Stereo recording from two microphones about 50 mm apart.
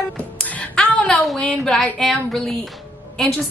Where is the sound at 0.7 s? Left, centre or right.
Centre.